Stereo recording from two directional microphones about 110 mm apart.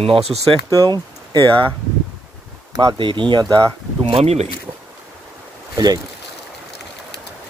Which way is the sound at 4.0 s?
60° right (ahead or behind).